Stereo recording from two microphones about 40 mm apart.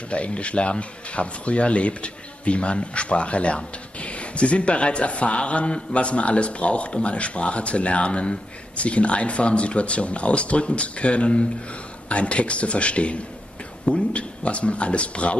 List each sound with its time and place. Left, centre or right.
0.1 s speech: left